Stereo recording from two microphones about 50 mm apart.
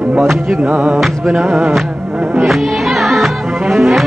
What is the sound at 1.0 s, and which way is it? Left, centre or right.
Music, centre.